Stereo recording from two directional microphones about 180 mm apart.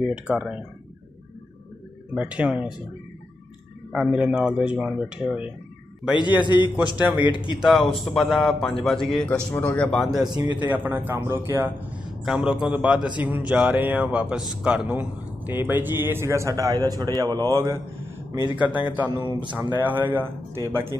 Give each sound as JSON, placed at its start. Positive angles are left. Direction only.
{"t": 0.1, "sound": "a man's voice", "side_deg": -5}
{"t": 2.1, "sound": "speech", "side_deg": -5}
{"t": 3.9, "sound": "a man's voice", "side_deg": -5}
{"t": 6.1, "sound": "speech", "side_deg": 25}
{"t": 6.6, "sound": "speech", "side_deg": -5}
{"t": 7.2, "sound": "speech", "side_deg": 25}
{"t": 7.6, "sound": "a man's voice", "side_deg": 0}
{"t": 19.0, "sound": "speech", "side_deg": -25}
{"t": 19.7, "sound": "speech", "side_deg": -10}